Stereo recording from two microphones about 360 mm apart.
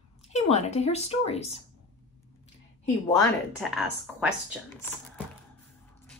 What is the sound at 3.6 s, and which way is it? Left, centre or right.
Speech, centre.